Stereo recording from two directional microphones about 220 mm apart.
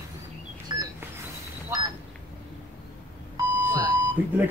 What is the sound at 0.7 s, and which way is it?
Telephone dialing, 20° right (ahead or behind).